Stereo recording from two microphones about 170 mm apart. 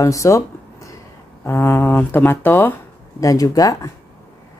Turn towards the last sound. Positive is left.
turn(degrees=20)  # may be behind; listen again after turning